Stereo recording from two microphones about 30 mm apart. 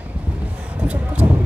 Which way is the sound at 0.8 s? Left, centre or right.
Right.